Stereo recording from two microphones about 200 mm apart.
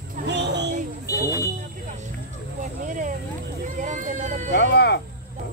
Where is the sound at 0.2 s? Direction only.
60° right (ahead or behind).